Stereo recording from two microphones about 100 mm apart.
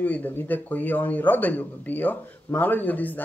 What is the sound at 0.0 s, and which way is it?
Speech, 15° left (ahead or behind).